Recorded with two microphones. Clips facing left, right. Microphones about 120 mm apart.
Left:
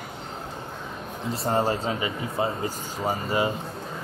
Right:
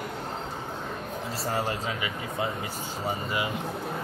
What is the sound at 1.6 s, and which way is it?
Speech, 35° left (ahead or behind).